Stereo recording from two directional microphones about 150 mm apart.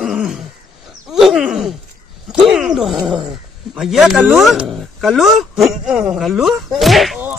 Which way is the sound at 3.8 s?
Centre (ahead or behind).